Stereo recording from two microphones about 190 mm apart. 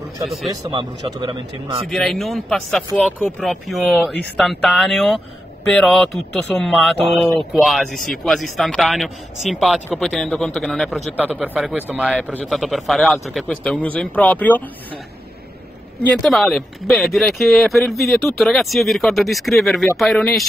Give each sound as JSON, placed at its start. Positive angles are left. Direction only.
{"t": 0.5, "sound": "a man's voice", "side_deg": -25}
{"t": 1.9, "sound": "a man's voice", "side_deg": 0}
{"t": 16.2, "sound": "a man's voice", "side_deg": 0}